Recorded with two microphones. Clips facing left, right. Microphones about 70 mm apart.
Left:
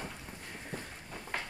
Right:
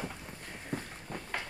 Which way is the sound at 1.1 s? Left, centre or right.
Right.